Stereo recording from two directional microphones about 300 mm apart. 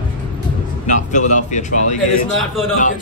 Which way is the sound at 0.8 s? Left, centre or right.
Left.